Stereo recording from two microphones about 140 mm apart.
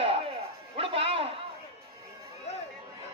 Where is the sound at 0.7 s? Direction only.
45° right (ahead or behind).